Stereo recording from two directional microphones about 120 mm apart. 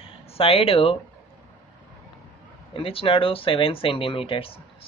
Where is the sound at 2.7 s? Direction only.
50° left (ahead or behind).